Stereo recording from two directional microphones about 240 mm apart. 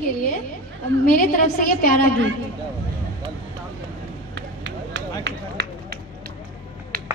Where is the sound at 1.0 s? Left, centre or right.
Left.